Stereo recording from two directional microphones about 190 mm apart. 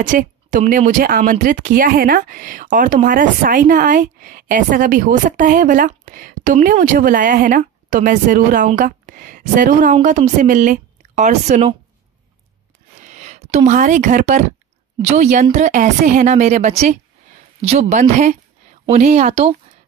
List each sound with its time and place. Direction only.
0.0 s a woman's voice: 40° right (ahead or behind)
13.0 s a woman's voice: 40° right (ahead or behind)